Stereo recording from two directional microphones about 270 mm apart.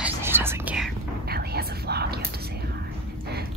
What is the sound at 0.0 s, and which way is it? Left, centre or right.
Whispering, centre.